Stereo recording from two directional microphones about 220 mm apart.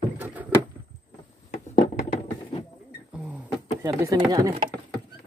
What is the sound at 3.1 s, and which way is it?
Beatboxing, 5° right (ahead or behind).